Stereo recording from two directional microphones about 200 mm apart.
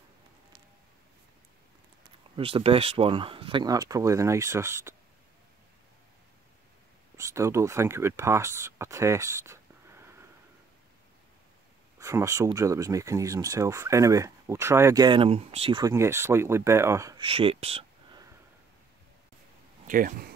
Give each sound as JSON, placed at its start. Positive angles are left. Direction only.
{"t": 2.3, "sound": "speech", "side_deg": -25}
{"t": 7.2, "sound": "speech", "side_deg": -15}
{"t": 12.0, "sound": "speech", "side_deg": -15}
{"t": 15.8, "sound": "speech", "side_deg": -15}
{"t": 17.2, "sound": "speech", "side_deg": -30}
{"t": 19.9, "sound": "speech", "side_deg": -45}